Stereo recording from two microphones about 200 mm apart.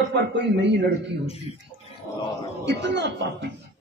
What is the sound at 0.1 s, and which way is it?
Speech, 60° right (ahead or behind).